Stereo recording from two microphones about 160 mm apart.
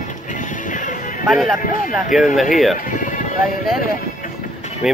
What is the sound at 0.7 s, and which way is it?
Music, 50° left (ahead or behind).